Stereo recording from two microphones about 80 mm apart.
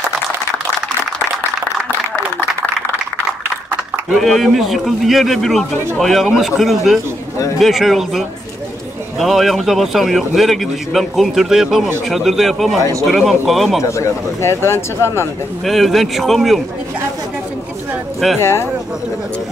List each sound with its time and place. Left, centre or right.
4.1 s a man's voice: centre
13.8 s speech: left
15.6 s a man's voice: centre
18.4 s speech: left